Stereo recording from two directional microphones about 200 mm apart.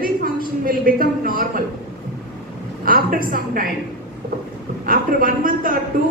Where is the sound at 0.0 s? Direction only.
45° right (ahead or behind).